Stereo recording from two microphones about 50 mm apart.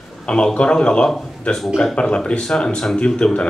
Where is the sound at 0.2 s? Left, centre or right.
Centre.